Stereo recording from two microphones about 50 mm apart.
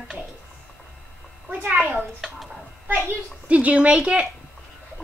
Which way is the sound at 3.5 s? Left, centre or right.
Right.